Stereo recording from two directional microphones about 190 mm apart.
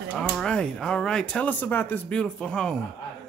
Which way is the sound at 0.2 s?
5° left (ahead or behind).